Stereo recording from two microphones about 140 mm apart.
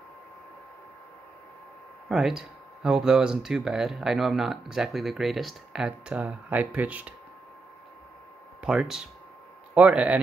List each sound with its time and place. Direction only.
2.0 s speech: centre (ahead or behind)
8.6 s a man's voice: 5° right (ahead or behind)